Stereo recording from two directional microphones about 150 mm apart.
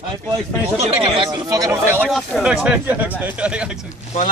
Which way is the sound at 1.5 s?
20° right (ahead or behind).